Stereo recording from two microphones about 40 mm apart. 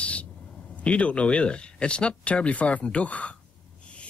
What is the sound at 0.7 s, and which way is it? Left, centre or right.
Speech, left.